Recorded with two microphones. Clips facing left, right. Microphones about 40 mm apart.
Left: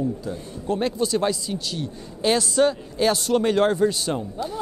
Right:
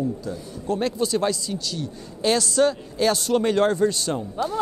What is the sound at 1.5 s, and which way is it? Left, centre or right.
Speech, left.